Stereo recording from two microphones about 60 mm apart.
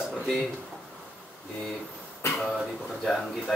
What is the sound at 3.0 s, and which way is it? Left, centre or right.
Speech, centre.